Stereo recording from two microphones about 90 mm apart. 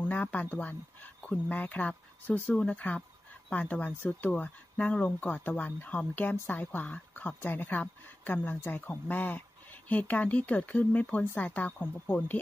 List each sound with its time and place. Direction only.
0.1 s speech: 20° left (ahead or behind)